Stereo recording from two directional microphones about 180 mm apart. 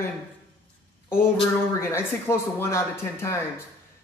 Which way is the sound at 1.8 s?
15° left (ahead or behind).